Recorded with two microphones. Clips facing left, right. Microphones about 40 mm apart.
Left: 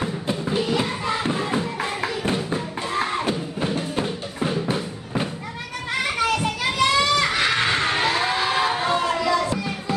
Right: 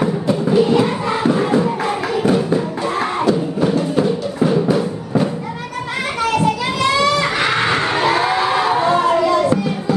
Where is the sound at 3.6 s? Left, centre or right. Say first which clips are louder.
Right 8 dB; right.